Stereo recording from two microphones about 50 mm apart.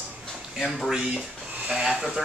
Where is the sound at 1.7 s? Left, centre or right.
Centre.